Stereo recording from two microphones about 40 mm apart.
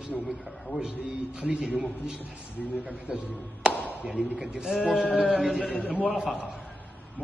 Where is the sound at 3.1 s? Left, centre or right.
Right.